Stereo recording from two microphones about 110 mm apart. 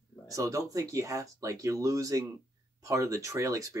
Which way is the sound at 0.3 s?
30° right (ahead or behind).